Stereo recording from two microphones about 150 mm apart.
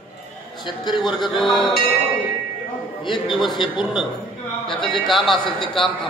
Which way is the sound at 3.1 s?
Centre (ahead or behind).